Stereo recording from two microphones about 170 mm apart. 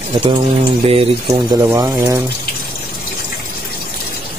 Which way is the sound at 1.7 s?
20° right (ahead or behind).